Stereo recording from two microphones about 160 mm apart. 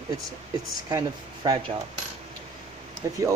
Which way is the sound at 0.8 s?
25° right (ahead or behind).